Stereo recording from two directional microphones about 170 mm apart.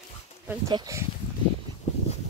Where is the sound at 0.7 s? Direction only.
20° right (ahead or behind).